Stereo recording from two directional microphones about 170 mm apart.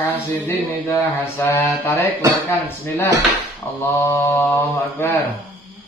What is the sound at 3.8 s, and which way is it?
A man's voice, 10° left (ahead or behind).